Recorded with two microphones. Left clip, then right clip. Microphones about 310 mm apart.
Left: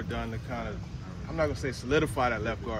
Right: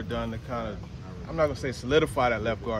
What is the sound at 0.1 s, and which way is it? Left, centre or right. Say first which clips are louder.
Speech: right 5 dB; centre.